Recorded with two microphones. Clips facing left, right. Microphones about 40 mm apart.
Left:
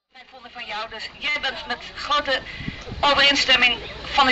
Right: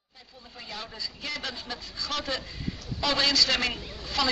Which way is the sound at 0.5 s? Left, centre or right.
Left.